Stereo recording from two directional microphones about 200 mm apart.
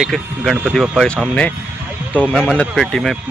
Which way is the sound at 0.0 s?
Centre (ahead or behind).